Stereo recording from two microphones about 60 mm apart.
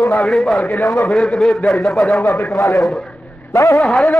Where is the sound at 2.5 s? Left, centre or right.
Left.